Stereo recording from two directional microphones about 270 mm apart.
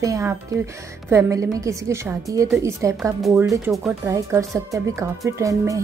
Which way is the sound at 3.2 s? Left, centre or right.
Centre.